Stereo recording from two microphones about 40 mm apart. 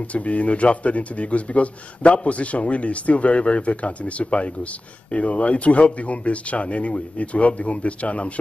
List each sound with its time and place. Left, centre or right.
0.0 s speech: left